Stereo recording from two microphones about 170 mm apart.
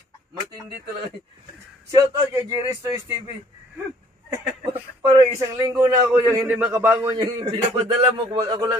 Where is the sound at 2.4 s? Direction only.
20° right (ahead or behind).